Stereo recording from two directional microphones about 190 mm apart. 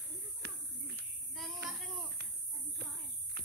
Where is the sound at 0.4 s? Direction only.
60° right (ahead or behind).